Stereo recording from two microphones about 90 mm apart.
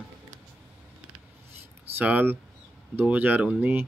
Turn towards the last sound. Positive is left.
turn(degrees=-20)  # may be behind; listen again after turning